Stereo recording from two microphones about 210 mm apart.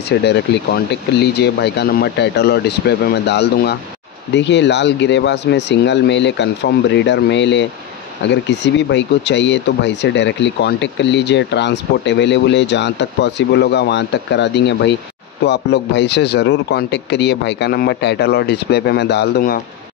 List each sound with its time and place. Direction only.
0.1 s speech: 55° left (ahead or behind)